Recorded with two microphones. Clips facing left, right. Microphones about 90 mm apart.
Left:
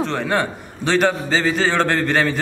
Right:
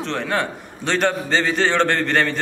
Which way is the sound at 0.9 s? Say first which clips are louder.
Left 2 dB; centre (ahead or behind).